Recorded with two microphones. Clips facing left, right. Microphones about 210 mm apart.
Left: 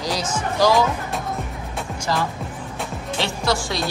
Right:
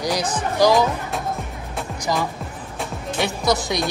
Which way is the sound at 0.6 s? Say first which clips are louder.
Right 2 dB; 15° right (ahead or behind).